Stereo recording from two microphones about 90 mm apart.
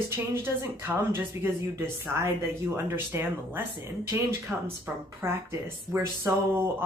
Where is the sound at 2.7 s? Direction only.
30° right (ahead or behind).